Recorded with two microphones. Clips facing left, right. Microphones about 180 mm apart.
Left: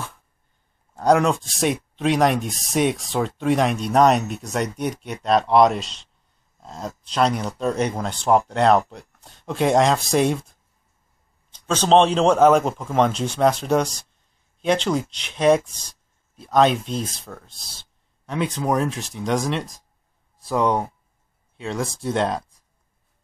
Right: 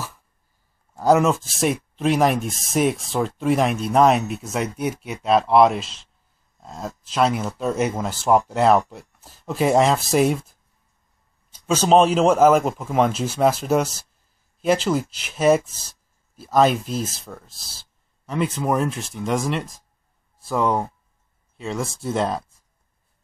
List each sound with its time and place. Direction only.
0.9 s speech: 5° right (ahead or behind)